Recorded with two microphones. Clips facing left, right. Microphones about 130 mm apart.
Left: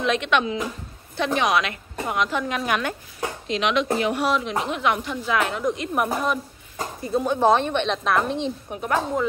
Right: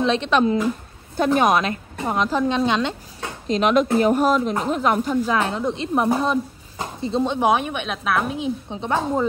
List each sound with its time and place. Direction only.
0.0 s a woman's voice: 30° right (ahead or behind)
3.4 s a woman's voice: 40° right (ahead or behind); by 7.3 s 25° right (ahead or behind)
7.3 s a woman's voice: 10° right (ahead or behind)
8.6 s a woman's voice: 20° right (ahead or behind)